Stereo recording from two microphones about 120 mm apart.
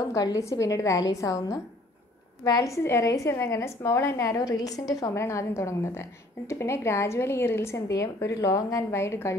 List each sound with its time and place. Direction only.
0.1 s a woman's voice: 30° left (ahead or behind)